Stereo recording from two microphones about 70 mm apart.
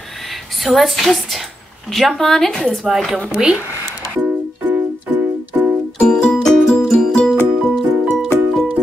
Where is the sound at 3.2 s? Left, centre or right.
Centre.